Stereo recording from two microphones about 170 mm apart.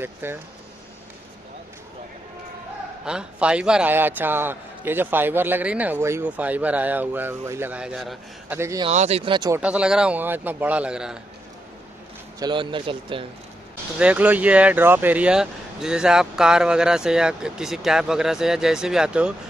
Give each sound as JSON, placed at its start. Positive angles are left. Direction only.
{"t": 0.0, "sound": "a man's voice", "side_deg": -15}
{"t": 3.1, "sound": "a man's voice", "side_deg": -5}
{"t": 8.5, "sound": "a man's voice", "side_deg": -15}
{"t": 8.8, "sound": "speech", "side_deg": -40}
{"t": 9.6, "sound": "a man's voice", "side_deg": -5}
{"t": 12.4, "sound": "speech", "side_deg": -25}
{"t": 13.9, "sound": "speech", "side_deg": -10}